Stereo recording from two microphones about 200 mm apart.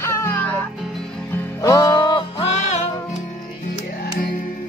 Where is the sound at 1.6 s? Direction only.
20° left (ahead or behind).